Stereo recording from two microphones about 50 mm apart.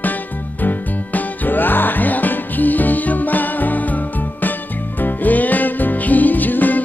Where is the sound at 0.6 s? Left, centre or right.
Left.